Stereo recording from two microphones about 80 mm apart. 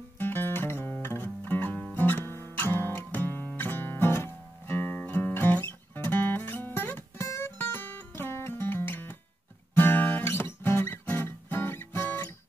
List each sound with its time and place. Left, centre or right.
0.2 s music: left
9.8 s guitar: left